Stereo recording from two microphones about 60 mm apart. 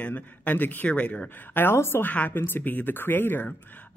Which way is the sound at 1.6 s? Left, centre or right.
Left.